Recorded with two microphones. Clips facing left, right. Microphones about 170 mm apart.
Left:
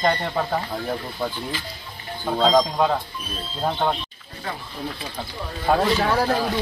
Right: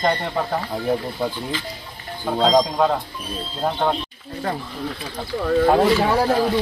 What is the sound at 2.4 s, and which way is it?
Speech, 15° right (ahead or behind).